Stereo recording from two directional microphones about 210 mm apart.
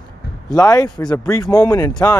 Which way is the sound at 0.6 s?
15° left (ahead or behind).